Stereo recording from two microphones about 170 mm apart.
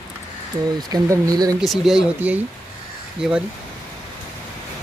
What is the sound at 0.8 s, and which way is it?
Speech, 20° right (ahead or behind).